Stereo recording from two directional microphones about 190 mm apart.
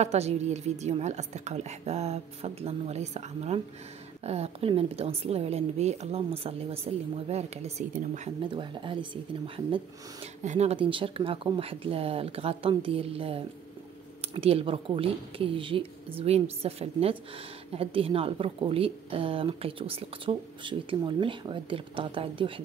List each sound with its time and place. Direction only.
0.0 s a woman's voice: 35° right (ahead or behind)
8.5 s a woman's voice: 25° right (ahead or behind)
10.2 s a woman's voice: 35° right (ahead or behind)